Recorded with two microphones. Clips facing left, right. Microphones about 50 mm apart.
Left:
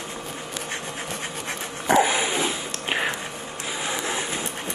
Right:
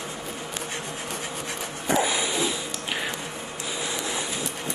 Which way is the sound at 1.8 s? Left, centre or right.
Left.